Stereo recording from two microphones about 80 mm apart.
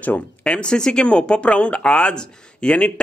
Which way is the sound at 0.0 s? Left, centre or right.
Centre.